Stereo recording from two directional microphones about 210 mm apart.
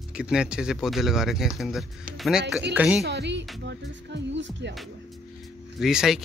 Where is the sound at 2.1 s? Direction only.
Centre (ahead or behind).